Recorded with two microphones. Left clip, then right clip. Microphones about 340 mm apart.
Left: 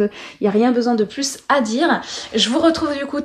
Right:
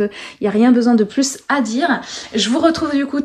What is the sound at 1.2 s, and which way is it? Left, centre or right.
A woman's voice, centre.